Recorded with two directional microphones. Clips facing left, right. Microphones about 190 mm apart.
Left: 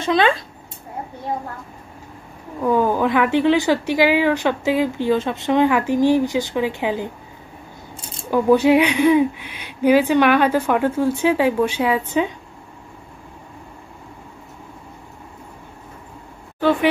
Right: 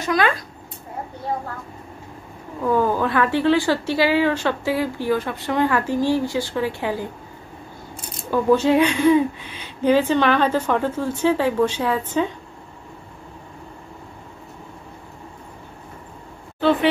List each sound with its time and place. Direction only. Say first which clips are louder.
0.0 s speech: left 3 dB; 25° left (ahead or behind)
2.6 s a woman's voice: left 2 dB; 15° left (ahead or behind)
8.3 s a woman's voice: left 3 dB; 15° left (ahead or behind)
16.5 s a sound: left 1 dB; 10° left (ahead or behind)